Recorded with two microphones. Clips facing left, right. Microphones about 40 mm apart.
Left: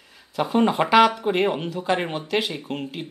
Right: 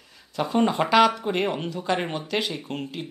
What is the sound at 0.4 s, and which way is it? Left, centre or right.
Speech, centre.